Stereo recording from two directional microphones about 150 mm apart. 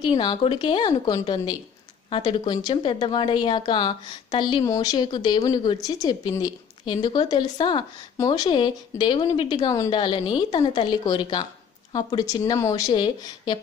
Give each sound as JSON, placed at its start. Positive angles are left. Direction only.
{"t": 0.0, "sound": "a woman's voice", "side_deg": 30}